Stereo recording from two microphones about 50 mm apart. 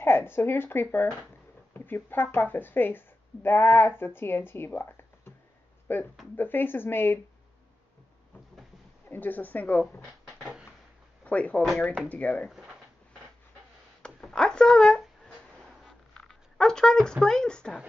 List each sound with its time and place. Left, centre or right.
0.0 s speech: left
9.1 s speech: left
14.2 s a sound: centre
16.3 s speech: centre